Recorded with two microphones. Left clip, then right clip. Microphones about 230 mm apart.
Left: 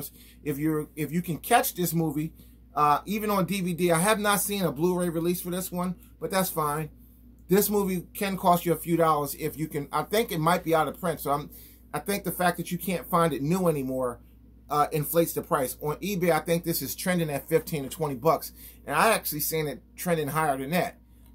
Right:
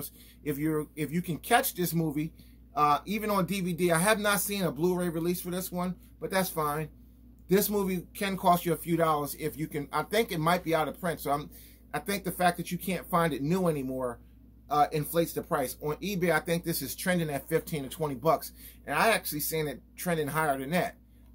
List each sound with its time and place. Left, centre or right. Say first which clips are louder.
0.0 s speech: left 2 dB; centre